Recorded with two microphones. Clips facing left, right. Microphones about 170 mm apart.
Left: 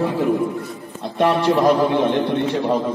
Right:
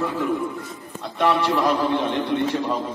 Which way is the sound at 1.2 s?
45° left (ahead or behind).